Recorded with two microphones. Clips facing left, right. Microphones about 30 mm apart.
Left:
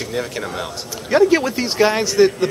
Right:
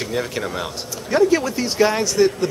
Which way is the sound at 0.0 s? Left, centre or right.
Centre.